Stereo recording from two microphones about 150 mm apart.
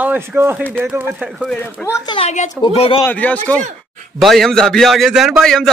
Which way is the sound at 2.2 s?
50° left (ahead or behind).